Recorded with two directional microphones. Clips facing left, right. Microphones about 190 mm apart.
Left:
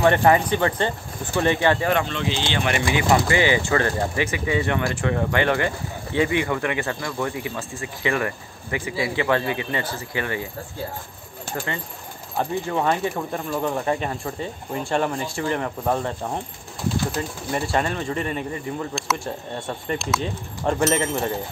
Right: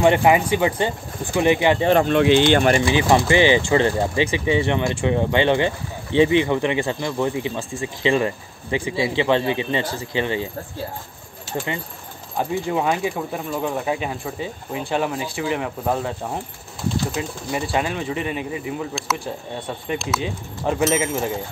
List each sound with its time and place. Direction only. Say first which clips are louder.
0.0 s speech: right 1 dB; 15° right (ahead or behind)
2.0 s speech: right 11 dB; 60° right (ahead or behind)
2.7 s speech: right 3 dB; 30° right (ahead or behind)
12.4 s speech: right 2 dB; 10° right (ahead or behind)